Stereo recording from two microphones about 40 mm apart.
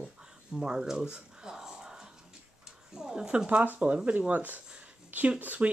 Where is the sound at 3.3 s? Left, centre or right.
Right.